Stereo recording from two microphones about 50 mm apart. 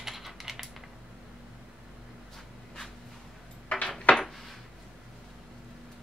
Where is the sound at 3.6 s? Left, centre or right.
Left.